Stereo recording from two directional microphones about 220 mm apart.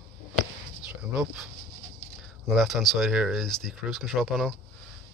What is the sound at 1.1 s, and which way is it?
Speech, 5° right (ahead or behind).